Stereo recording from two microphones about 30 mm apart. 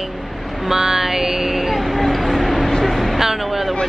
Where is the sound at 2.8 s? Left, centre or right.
Centre.